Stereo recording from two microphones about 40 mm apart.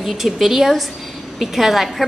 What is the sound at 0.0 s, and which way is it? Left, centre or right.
A woman's voice, centre.